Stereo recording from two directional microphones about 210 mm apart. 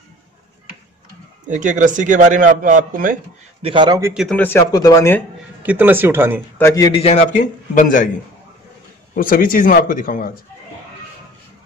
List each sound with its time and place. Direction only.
1.5 s speech: 35° right (ahead or behind)
3.6 s a man's voice: 20° right (ahead or behind)
4.1 s speech: centre (ahead or behind)
4.4 s speech: 10° left (ahead or behind)
5.6 s speech: 10° right (ahead or behind)
6.6 s speech: 15° left (ahead or behind)
7.0 s speech: 30° left (ahead or behind)
9.1 s speech: 40° left (ahead or behind)